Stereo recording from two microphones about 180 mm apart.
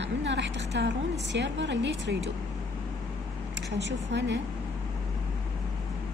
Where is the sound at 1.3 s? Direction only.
80° right.